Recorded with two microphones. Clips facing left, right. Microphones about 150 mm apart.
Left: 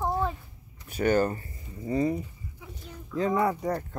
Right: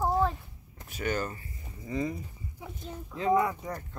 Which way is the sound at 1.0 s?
40° left (ahead or behind).